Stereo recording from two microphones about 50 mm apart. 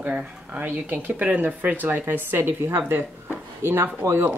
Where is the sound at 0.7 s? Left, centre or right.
Right.